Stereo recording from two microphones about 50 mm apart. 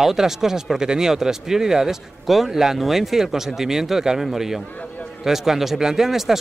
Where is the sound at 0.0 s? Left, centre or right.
Centre.